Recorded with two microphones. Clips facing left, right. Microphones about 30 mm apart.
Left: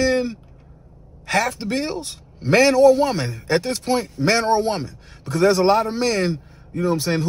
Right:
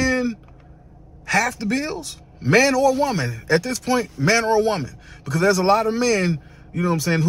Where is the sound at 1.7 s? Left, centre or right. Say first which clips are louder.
Even; left.